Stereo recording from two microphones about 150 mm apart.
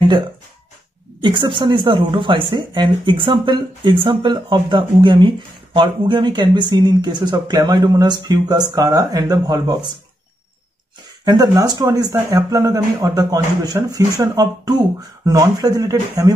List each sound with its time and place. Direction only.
1.2 s speech: 30° right (ahead or behind)
11.2 s speech: 25° right (ahead or behind)